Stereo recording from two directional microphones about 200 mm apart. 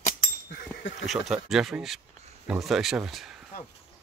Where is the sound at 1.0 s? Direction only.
Centre (ahead or behind).